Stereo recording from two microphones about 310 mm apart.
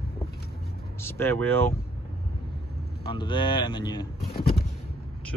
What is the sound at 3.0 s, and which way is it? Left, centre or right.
Speech, centre.